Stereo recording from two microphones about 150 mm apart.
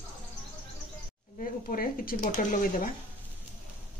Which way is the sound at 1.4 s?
70° left (ahead or behind).